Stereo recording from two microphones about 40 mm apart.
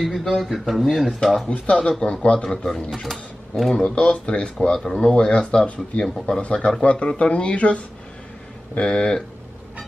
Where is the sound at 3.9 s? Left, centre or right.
Left.